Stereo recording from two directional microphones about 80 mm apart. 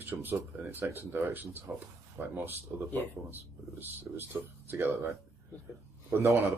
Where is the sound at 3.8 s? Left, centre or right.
Right.